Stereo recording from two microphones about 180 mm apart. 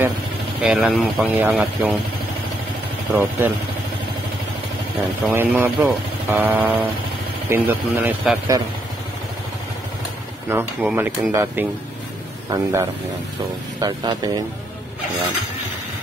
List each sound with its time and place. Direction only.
0.6 s speech: 5° right (ahead or behind)
3.2 s speech: 10° right (ahead or behind)
5.3 s speech: 10° right (ahead or behind)
10.5 s speech: 10° right (ahead or behind)